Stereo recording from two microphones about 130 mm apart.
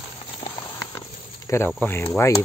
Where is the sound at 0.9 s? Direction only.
25° left (ahead or behind).